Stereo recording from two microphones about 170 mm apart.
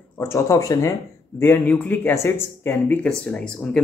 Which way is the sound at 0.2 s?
15° left (ahead or behind).